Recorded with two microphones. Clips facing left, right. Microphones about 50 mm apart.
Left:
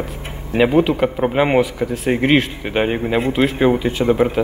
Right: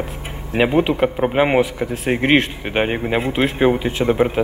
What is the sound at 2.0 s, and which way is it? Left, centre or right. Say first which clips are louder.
Speech: even; centre.